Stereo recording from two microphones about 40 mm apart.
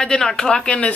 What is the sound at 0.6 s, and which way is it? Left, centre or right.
Speech, left.